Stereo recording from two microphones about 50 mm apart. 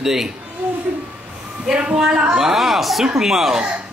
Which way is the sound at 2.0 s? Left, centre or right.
Centre.